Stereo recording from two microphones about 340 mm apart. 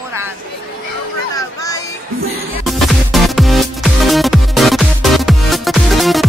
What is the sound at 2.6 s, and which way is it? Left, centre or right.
Music, centre.